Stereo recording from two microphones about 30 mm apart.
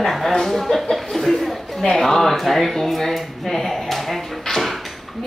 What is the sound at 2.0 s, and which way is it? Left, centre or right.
Speech, centre.